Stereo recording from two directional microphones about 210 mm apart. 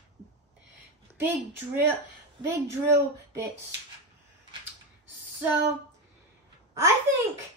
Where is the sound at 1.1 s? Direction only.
10° right (ahead or behind).